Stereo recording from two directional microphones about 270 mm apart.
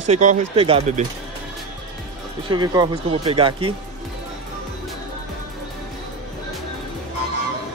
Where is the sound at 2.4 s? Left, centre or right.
Centre.